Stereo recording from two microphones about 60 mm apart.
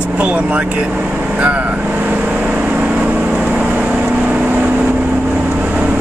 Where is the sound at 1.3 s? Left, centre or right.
Right.